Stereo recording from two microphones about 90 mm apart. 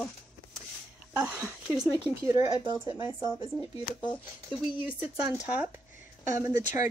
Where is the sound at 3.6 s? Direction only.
55° left (ahead or behind).